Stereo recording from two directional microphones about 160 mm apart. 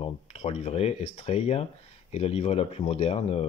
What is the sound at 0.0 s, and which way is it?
Speech, 40° left (ahead or behind).